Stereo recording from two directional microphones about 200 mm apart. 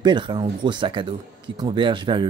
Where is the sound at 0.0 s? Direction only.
20° right (ahead or behind).